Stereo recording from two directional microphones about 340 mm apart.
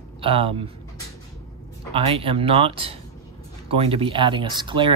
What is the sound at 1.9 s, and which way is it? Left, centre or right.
Speech, centre.